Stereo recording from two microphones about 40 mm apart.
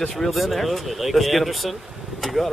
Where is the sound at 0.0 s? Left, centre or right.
Centre.